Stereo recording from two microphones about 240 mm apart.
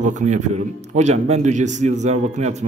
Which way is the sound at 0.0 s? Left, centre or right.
Right.